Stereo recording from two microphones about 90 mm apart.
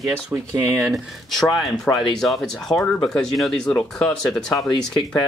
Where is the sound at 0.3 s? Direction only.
35° right (ahead or behind).